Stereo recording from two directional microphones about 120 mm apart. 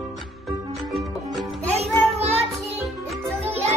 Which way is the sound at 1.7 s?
60° right (ahead or behind).